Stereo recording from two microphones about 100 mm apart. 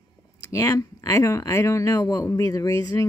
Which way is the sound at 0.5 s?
35° left (ahead or behind).